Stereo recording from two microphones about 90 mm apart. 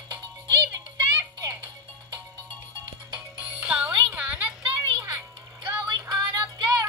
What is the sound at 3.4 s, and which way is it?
Music, 15° right (ahead or behind).